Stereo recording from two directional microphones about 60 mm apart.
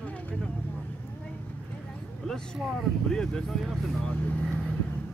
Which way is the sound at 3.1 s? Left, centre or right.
Centre.